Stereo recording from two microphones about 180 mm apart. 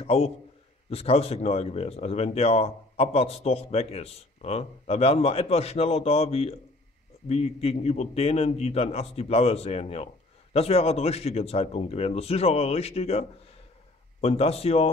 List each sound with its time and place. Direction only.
0.0 s a man's voice: 35° left (ahead or behind)
14.2 s speech: 35° left (ahead or behind)